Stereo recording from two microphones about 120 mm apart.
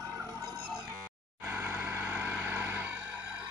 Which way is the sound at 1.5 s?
20° right (ahead or behind).